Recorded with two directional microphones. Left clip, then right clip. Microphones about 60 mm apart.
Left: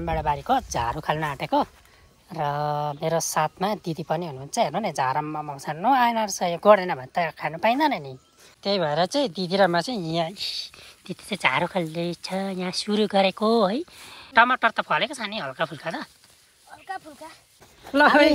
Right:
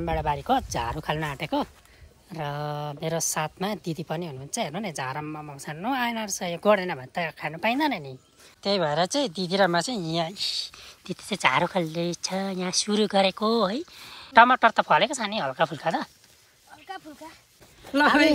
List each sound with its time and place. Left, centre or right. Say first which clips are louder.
0.0 s a woman's voice: left 2 dB; centre; by 6.6 s left
6.6 s speech: left 5 dB; centre
8.6 s speech: left 1 dB; centre
14.3 s speech: right 2 dB; right
16.7 s a sound: left 3 dB; centre